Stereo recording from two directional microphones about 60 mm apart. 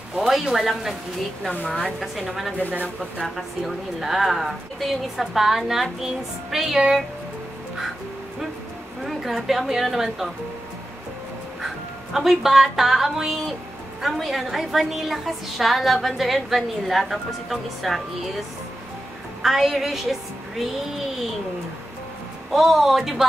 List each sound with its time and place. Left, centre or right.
0.1 s a woman's voice: centre
2.0 s a woman's voice: centre
9.0 s a woman's voice: centre
11.6 s a sound: centre
12.7 s a woman's voice: centre
19.4 s a woman's voice: centre
22.5 s a woman's voice: centre